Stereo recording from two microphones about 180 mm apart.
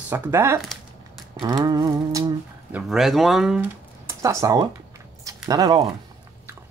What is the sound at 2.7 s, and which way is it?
Speech, centre (ahead or behind).